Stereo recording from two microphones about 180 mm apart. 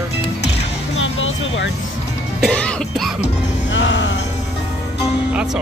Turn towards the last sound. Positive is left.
turn(degrees=-5)  # may be behind; listen again after turning